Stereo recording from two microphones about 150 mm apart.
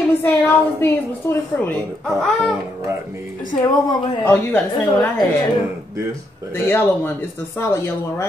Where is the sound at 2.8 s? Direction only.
20° right (ahead or behind).